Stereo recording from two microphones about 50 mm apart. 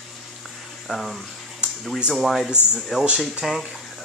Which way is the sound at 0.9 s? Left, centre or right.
Centre.